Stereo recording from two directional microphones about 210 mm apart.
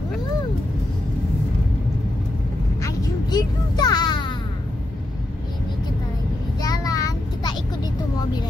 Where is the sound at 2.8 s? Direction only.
20° left (ahead or behind).